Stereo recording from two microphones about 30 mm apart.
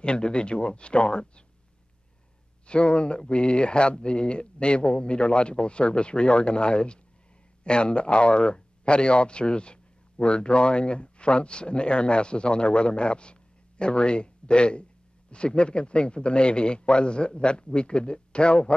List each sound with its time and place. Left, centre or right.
0.0 s speech: left
2.6 s speech: left